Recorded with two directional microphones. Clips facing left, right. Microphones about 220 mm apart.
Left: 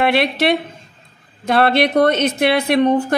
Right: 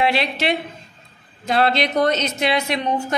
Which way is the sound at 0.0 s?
60° left (ahead or behind).